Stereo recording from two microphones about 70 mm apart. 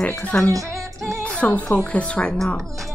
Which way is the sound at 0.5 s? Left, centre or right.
Right.